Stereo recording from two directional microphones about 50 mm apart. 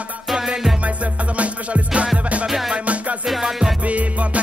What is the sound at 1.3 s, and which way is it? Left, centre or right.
Music, right.